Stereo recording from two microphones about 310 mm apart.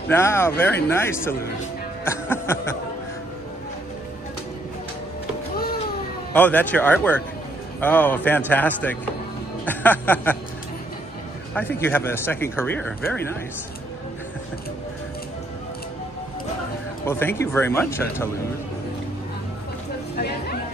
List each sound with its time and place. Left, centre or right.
0.1 s speech: centre
6.3 s a man's voice: centre
11.5 s speech: centre
17.0 s speech: centre
20.2 s speech: left